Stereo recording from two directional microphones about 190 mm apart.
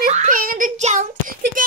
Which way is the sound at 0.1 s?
40° right (ahead or behind).